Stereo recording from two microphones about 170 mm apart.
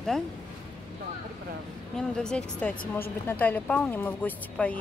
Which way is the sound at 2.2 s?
5° left (ahead or behind).